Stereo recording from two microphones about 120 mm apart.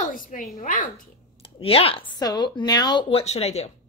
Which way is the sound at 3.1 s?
55° left (ahead or behind).